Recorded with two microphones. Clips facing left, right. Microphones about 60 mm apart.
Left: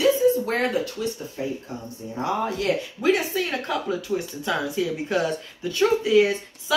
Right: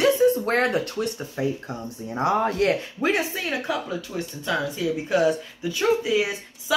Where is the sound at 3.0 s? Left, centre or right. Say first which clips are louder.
Left 2 dB; right.